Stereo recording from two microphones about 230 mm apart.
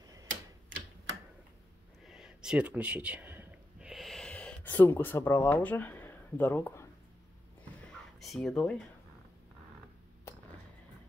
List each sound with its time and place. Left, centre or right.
0.0 s tick-tock: centre
2.0 s a sound: centre
8.2 s speech: centre